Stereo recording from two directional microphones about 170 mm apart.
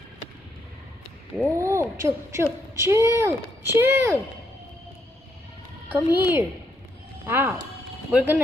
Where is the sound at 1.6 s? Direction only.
15° right (ahead or behind).